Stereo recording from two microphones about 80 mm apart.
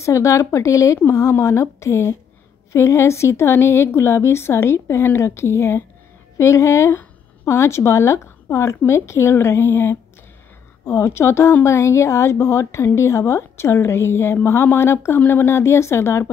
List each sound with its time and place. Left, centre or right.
0.0 s a woman's voice: left